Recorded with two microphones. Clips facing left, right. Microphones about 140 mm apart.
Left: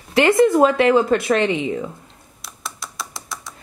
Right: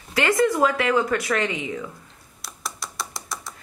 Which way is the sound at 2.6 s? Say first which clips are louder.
Left 1 dB; centre (ahead or behind).